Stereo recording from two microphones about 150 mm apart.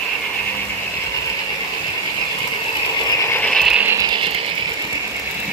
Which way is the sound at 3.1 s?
20° left (ahead or behind).